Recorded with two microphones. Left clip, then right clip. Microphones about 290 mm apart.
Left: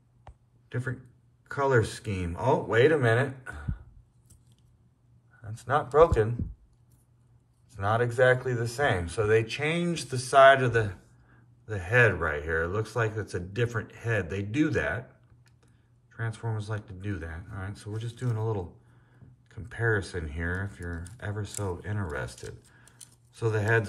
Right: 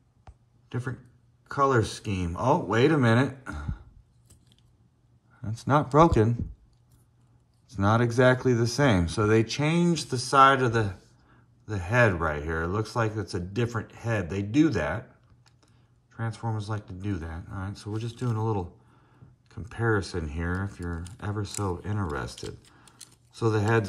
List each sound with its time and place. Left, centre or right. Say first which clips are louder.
0.7 s speech: left 1 dB; centre
5.5 s speech: right 2 dB; centre
7.6 s speech: right 2 dB; centre
21.8 s speech: right 2 dB; centre